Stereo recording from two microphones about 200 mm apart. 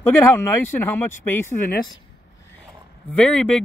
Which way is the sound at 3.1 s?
5° left (ahead or behind).